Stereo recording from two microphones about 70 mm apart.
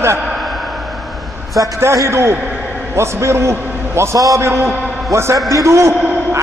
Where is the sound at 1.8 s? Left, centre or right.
Right.